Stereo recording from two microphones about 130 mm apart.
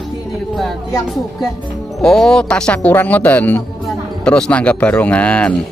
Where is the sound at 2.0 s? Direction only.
5° left (ahead or behind).